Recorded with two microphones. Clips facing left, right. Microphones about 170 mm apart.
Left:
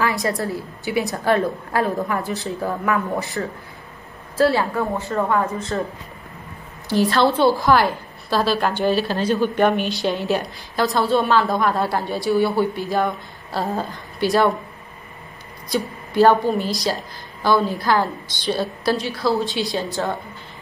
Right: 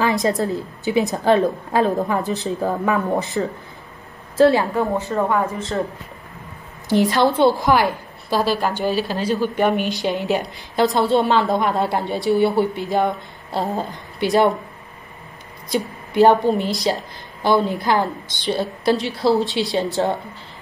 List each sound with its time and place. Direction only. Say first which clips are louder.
0.0 s a woman's voice: right 3 dB; 20° right (ahead or behind)
6.9 s a woman's voice: right 1 dB; 20° right (ahead or behind)
15.7 s a woman's voice: right 1 dB; 20° right (ahead or behind)